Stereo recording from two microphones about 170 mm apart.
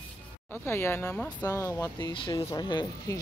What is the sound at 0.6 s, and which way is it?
Speech, 15° left (ahead or behind).